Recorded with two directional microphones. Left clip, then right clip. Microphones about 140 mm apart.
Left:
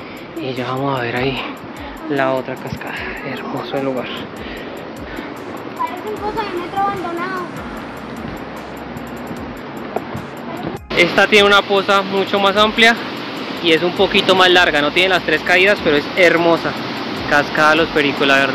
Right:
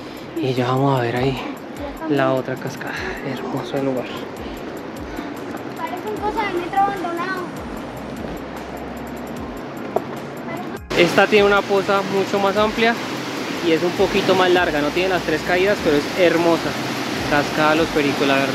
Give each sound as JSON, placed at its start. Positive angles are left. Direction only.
{"t": 0.4, "sound": "speech", "side_deg": -60}
{"t": 1.1, "sound": "speech", "side_deg": -15}
{"t": 2.1, "sound": "speech", "side_deg": -30}
{"t": 11.2, "sound": "speech", "side_deg": -10}